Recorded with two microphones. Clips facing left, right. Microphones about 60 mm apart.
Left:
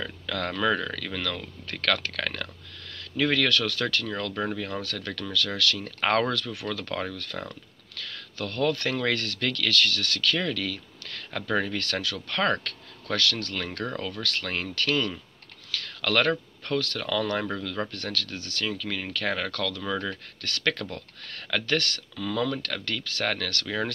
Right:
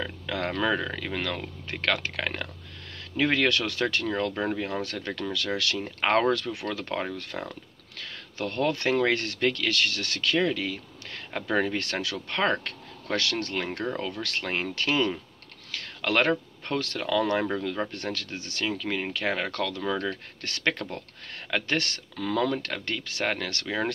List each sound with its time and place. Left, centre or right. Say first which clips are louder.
0.0 s speech: right 1 dB; right
22.1 s speech: right 2 dB; right